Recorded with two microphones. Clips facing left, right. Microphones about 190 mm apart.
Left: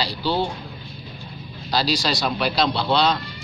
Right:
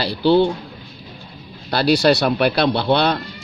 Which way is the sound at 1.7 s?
60° right (ahead or behind).